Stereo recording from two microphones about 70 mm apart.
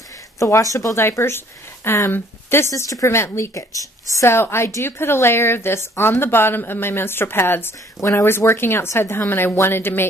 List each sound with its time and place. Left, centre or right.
0.4 s speech: left
0.9 s a woman's voice: left
2.7 s a woman's voice: left